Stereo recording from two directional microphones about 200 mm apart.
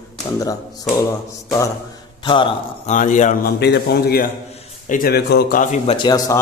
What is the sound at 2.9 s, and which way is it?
Speech, 40° left (ahead or behind).